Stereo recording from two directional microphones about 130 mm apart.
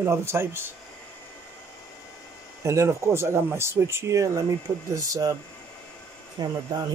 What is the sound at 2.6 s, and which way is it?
Speech, 25° right (ahead or behind).